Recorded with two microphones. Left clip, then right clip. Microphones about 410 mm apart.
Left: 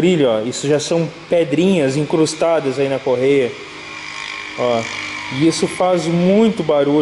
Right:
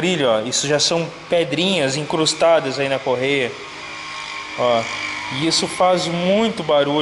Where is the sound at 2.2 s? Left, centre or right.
Centre.